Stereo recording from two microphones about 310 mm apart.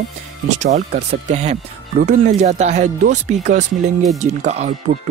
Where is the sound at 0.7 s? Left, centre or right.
Right.